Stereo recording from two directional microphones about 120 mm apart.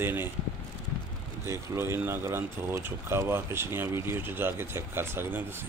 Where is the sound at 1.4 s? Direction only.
20° right (ahead or behind).